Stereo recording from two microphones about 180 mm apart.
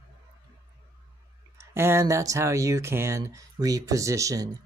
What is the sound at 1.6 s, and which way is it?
Speech, 15° right (ahead or behind).